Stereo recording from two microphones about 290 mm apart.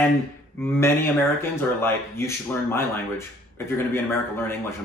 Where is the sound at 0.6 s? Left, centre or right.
Centre.